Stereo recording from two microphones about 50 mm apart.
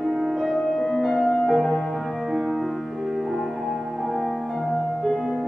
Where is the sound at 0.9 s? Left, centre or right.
Centre.